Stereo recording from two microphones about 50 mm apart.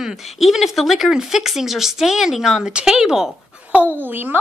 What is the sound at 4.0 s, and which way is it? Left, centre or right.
Speech, right.